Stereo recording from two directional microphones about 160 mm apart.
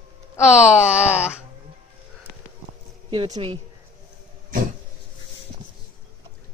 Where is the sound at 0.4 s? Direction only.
15° left (ahead or behind).